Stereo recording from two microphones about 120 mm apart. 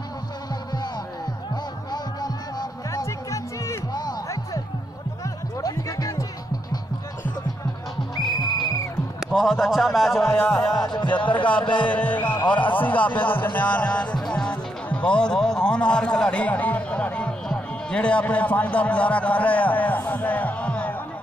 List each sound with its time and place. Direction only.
1.9 s music: 35° left (ahead or behind)
5.6 s music: 30° left (ahead or behind)
8.3 s music: 35° left (ahead or behind)
9.2 s a man's voice: centre (ahead or behind)
10.7 s music: 35° left (ahead or behind)
11.3 s speech: 10° left (ahead or behind)
12.2 s music: 40° left (ahead or behind)
12.4 s speech: 10° left (ahead or behind)